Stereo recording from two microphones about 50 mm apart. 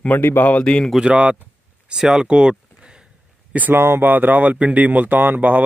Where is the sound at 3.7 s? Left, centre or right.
Right.